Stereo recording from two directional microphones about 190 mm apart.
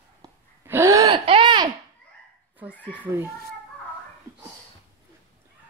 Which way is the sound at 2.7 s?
10° left (ahead or behind).